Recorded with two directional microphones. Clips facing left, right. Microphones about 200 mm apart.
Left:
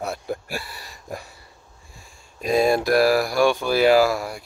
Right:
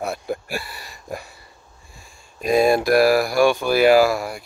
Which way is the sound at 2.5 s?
10° right (ahead or behind).